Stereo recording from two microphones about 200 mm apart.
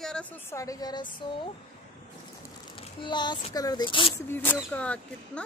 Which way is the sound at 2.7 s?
25° left (ahead or behind).